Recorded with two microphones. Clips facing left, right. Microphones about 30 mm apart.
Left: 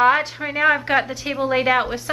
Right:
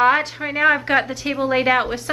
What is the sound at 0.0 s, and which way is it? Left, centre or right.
A woman's voice, centre.